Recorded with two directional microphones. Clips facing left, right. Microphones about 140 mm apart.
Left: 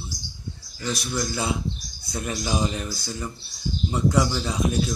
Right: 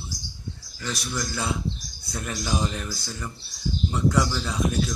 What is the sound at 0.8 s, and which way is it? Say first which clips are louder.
Speech: left 3 dB; 15° left (ahead or behind).